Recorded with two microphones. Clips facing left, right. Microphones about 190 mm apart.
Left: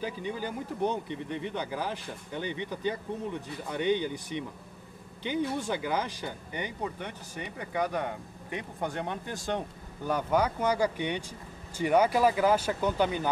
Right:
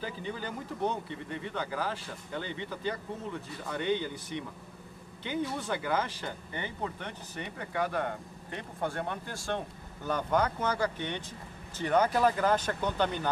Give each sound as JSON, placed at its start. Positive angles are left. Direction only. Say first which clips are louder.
{"t": 0.0, "sound": "speech", "louder": "left 3 dB", "side_deg": 15}